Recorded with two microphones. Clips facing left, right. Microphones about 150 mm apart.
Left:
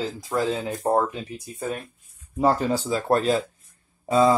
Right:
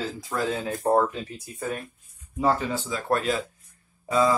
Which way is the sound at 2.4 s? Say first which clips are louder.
Left 3 dB; 40° left (ahead or behind).